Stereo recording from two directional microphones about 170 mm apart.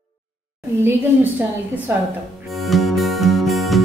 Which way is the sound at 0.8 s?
15° right (ahead or behind).